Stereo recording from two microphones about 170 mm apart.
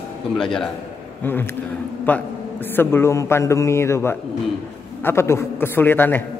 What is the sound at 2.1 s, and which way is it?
A man's voice, 10° left (ahead or behind).